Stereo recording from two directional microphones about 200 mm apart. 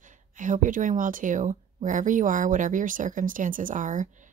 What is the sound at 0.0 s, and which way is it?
Speech, 40° right (ahead or behind).